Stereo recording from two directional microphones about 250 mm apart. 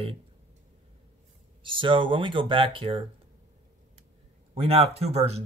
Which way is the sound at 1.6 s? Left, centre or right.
Right.